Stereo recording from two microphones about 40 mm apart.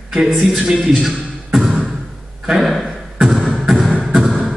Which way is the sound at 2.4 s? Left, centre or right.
Centre.